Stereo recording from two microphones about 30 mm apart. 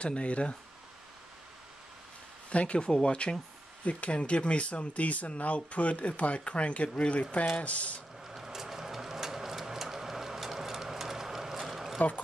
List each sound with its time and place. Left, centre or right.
0.0 s speech: left
2.5 s speech: left
2.8 s speech: left
3.8 s speech: left
8.3 s vehicle: centre